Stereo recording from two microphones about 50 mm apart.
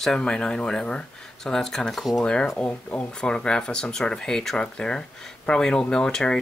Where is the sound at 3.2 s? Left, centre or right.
Centre.